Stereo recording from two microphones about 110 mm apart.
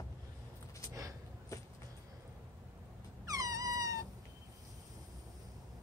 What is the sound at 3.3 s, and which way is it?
Dog, 35° right (ahead or behind).